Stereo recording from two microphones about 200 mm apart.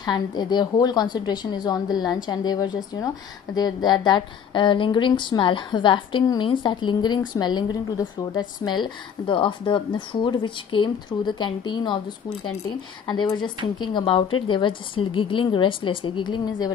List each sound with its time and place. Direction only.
0.0 s a woman's voice: 20° left (ahead or behind)